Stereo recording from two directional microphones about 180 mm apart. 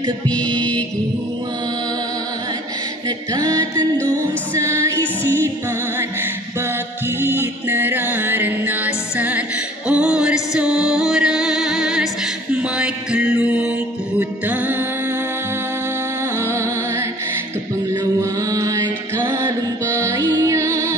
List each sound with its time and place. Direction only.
0.3 s music: 5° left (ahead or behind)
3.3 s music: 20° right (ahead or behind)
4.9 s music: 10° left (ahead or behind)
7.2 s music: 10° right (ahead or behind)
18.5 s music: 20° right (ahead or behind)